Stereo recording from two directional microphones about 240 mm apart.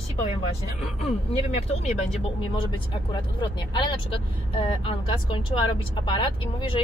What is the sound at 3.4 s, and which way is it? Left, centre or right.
Speech, centre.